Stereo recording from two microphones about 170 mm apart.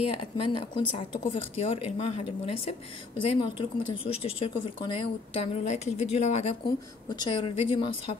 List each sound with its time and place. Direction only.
0.1 s speech: 30° left (ahead or behind)
7.1 s speech: 30° left (ahead or behind)